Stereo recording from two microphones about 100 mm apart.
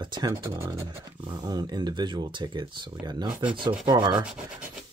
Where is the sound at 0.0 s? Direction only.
50° right (ahead or behind).